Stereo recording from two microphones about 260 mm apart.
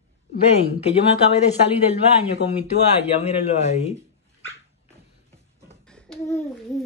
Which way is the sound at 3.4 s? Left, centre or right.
Left.